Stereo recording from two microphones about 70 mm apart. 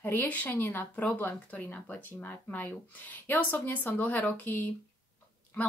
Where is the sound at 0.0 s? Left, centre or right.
Left.